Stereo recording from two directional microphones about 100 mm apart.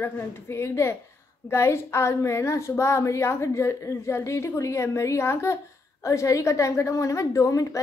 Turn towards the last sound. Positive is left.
turn(degrees=35)  # may be behind; listen again after turning